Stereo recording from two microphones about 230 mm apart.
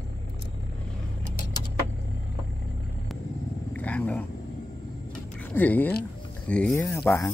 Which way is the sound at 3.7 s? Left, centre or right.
Centre.